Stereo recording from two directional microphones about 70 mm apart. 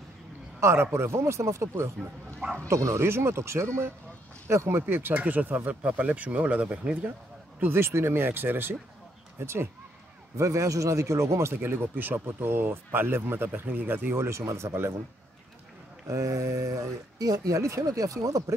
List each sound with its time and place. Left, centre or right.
0.6 s a man's voice: right; by 7.1 s centre
7.6 s speech: right
16.1 s speech: right